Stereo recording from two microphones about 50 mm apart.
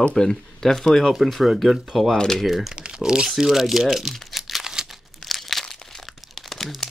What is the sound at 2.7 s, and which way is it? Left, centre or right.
Speech, centre.